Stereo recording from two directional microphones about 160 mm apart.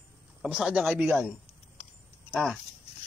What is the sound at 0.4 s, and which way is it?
Speech, 5° right (ahead or behind).